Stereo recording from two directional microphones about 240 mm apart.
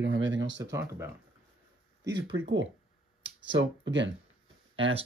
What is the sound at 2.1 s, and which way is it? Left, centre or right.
Speech, right.